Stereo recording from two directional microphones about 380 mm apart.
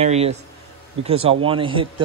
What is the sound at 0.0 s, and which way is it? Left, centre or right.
Speech, centre.